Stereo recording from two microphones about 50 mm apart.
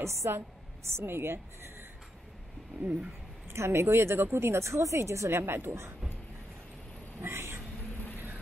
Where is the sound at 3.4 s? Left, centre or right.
Right.